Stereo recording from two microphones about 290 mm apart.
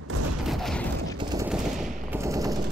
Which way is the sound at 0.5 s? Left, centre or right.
Centre.